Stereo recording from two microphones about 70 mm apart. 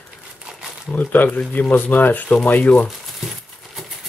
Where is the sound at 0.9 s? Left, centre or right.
Left.